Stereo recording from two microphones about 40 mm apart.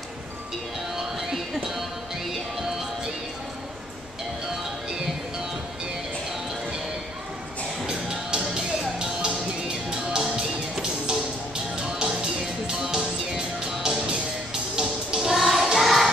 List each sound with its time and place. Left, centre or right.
1.5 s music: centre
7.8 s music: centre